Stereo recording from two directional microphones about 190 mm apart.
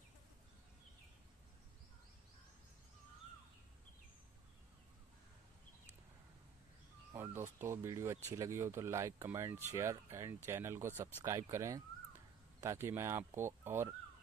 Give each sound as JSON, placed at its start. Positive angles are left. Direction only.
{"t": 7.1, "sound": "speech", "side_deg": -10}